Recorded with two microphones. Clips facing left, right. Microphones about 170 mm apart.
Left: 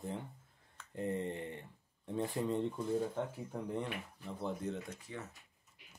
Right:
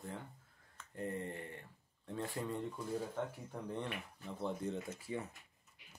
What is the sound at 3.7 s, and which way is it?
Speech, 5° left (ahead or behind).